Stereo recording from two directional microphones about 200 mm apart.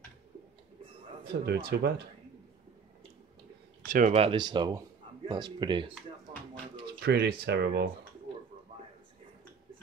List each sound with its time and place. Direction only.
1.2 s speech: 55° right (ahead or behind)
3.9 s a man's voice: 35° right (ahead or behind)
7.0 s speech: 55° right (ahead or behind)